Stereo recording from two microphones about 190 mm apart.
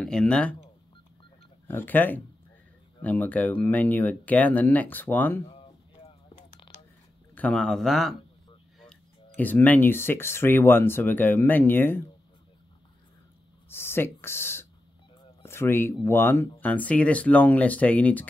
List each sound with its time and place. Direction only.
0.0 s speech: 5° left (ahead or behind)
1.7 s speech: 10° left (ahead or behind)
5.5 s a sound: 30° left (ahead or behind)
7.3 s a man's voice: 5° left (ahead or behind)
9.4 s speech: 10° left (ahead or behind)
13.7 s speech: 10° left (ahead or behind)